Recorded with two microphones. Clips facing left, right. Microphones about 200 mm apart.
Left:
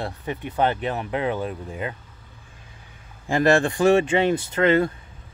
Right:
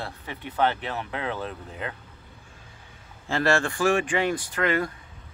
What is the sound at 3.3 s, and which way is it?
Speech, 15° left (ahead or behind).